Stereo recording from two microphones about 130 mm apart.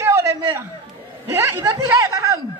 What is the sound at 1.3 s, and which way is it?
Speech, 25° right (ahead or behind).